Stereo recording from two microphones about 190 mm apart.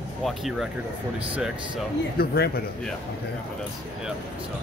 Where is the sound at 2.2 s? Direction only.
55° left (ahead or behind).